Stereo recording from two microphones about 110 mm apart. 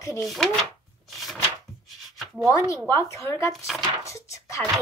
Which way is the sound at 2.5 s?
30° left (ahead or behind).